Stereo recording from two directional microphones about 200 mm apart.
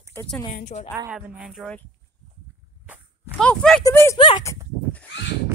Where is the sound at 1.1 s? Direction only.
5° right (ahead or behind).